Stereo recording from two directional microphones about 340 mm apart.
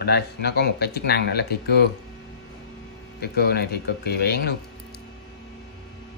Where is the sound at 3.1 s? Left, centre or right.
Left.